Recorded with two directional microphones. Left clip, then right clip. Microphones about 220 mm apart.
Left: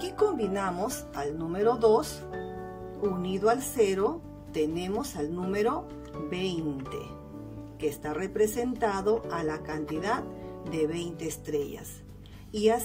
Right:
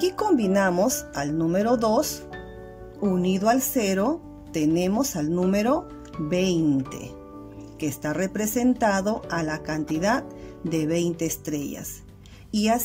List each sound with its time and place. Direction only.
0.0 s speech: 40° right (ahead or behind)
3.2 s speech: 40° right (ahead or behind)
8.0 s speech: 40° right (ahead or behind)